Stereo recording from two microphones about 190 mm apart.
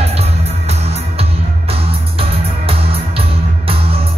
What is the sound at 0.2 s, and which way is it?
Music, 30° right (ahead or behind).